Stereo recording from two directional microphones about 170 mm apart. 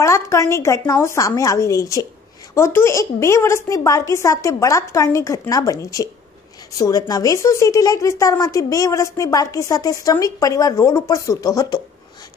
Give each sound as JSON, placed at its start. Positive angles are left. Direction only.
{"t": 0.0, "sound": "a woman's voice", "side_deg": 15}